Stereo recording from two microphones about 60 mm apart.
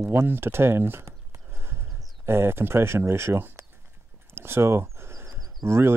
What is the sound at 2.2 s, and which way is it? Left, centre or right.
Speech, right.